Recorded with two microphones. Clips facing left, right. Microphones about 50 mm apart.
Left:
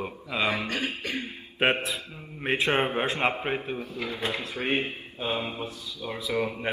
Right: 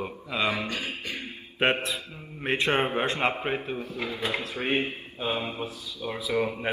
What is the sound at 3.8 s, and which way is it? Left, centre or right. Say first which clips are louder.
Speech: right 1 dB; right.